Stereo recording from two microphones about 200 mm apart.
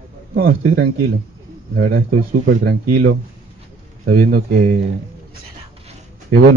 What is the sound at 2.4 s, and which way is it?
Speech, 45° right (ahead or behind).